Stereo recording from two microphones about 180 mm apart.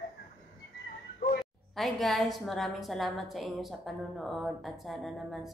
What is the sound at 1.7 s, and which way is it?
A woman's voice, centre (ahead or behind).